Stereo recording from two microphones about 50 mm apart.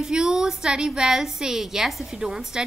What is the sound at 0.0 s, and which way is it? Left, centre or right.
A woman's voice, centre.